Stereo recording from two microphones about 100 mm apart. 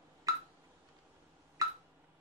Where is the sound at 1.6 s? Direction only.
35° right (ahead or behind).